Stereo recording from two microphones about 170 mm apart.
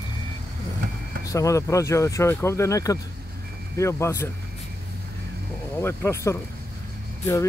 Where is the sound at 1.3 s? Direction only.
20° left (ahead or behind).